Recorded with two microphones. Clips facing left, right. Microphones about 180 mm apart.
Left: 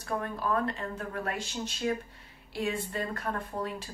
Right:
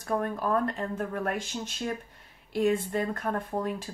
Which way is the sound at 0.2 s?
50° right (ahead or behind).